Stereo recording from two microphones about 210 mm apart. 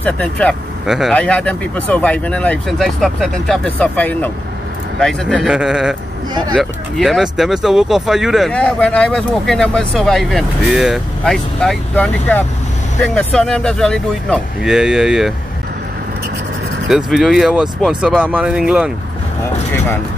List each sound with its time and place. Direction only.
0.0 s speech: 5° left (ahead or behind)
16.8 s speech: centre (ahead or behind)